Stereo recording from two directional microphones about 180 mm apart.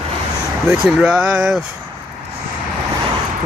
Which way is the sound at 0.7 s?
5° right (ahead or behind).